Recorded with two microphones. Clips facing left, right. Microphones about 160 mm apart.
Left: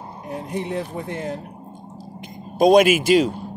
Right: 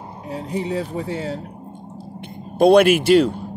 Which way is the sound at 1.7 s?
60° right (ahead or behind).